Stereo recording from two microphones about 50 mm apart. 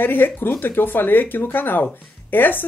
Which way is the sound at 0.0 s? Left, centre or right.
Left.